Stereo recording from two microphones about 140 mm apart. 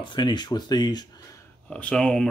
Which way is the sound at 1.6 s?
10° left (ahead or behind).